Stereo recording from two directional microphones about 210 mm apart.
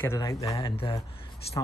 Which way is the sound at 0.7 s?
25° left (ahead or behind).